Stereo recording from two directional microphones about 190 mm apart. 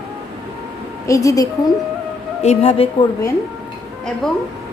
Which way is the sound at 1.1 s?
15° left (ahead or behind).